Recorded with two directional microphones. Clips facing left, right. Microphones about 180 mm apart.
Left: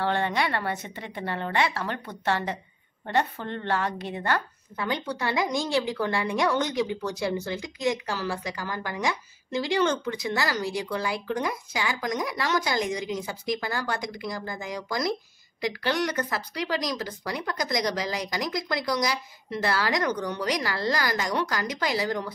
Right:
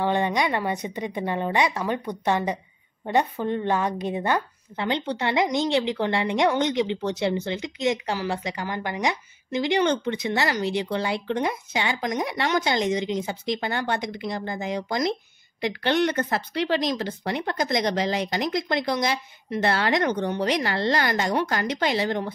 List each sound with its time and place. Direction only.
0.0 s a woman's voice: 15° right (ahead or behind)